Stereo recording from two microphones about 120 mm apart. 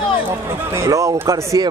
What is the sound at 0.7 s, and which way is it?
Speech, 25° right (ahead or behind).